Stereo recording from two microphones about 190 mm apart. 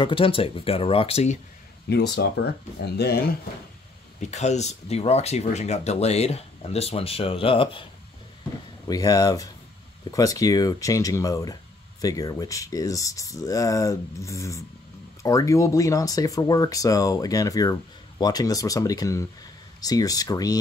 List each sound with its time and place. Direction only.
0.0 s speech: 30° left (ahead or behind)
1.9 s speech: 60° left (ahead or behind)
4.2 s speech: 35° left (ahead or behind)
8.8 s speech: 20° left (ahead or behind)